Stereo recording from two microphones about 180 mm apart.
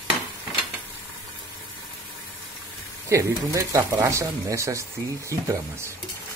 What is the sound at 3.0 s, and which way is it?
Speech, 15° right (ahead or behind).